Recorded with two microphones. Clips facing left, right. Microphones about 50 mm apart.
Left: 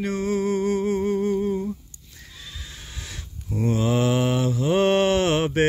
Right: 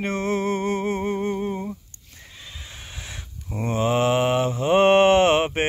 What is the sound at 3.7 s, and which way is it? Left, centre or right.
Mantra, right.